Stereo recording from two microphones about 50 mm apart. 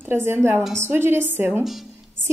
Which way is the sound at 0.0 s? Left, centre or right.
Right.